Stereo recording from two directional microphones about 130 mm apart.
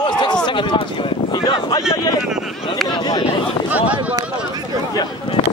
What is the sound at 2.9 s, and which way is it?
Speech, 35° left (ahead or behind).